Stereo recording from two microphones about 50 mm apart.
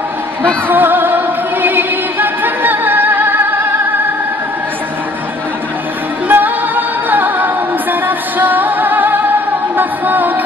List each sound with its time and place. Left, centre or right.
0.7 s music: right
6.2 s music: right